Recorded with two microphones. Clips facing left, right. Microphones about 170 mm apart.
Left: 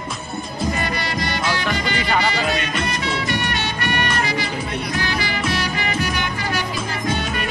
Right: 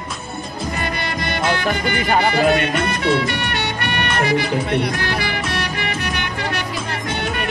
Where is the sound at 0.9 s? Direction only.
55° right (ahead or behind).